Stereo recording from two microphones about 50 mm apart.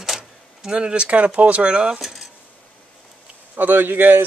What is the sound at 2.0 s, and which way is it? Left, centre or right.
Speech, centre.